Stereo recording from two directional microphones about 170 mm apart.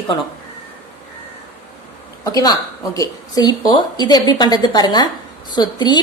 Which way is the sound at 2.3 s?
20° left (ahead or behind).